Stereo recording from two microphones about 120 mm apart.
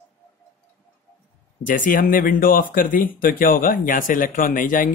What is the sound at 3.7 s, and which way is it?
Speech, 90° left.